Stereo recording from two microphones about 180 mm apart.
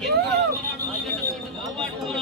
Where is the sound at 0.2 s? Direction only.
65° right (ahead or behind).